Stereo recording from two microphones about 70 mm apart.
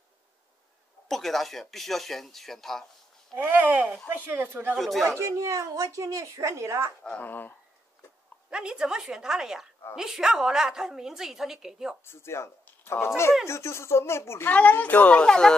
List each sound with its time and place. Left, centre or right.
1.0 s speech: centre
3.3 s speech: right
4.7 s speech: centre
5.2 s speech: right
7.0 s speech: left
8.5 s a woman's voice: centre
12.0 s speech: left
14.5 s speech: left